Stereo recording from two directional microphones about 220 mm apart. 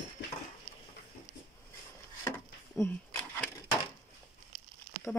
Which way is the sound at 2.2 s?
10° left (ahead or behind).